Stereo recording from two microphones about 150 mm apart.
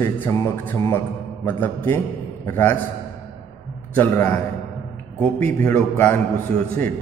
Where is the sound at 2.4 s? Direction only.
15° left (ahead or behind).